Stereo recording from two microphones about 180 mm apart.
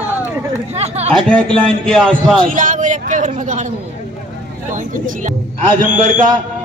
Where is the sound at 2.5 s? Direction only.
45° right (ahead or behind).